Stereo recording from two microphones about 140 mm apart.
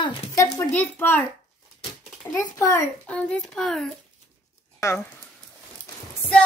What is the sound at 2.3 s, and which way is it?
Speech, 20° left (ahead or behind).